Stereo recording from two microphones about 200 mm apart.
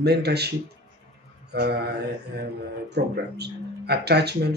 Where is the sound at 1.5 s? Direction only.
55° right (ahead or behind).